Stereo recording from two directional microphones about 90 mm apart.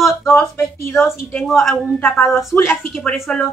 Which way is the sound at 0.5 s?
30° left (ahead or behind).